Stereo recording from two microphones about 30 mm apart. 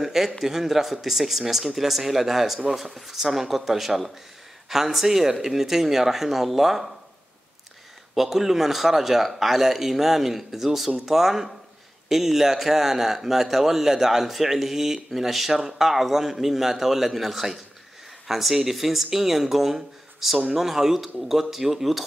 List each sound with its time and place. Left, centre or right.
0.0 s a man's voice: centre
8.1 s a man's voice: centre